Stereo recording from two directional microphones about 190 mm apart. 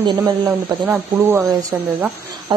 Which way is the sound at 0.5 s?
10° right (ahead or behind).